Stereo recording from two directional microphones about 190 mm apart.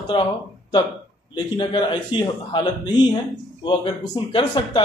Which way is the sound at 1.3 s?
25° left (ahead or behind).